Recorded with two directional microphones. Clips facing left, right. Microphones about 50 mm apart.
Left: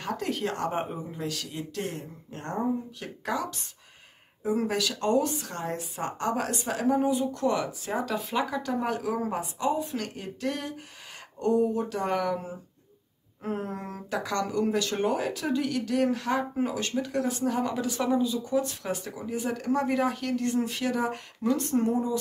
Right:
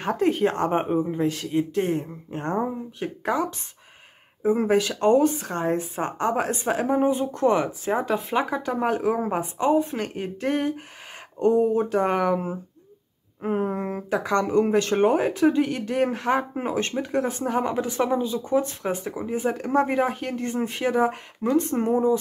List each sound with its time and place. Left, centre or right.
0.0 s speech: right
11.7 s speech: right
13.4 s speech: centre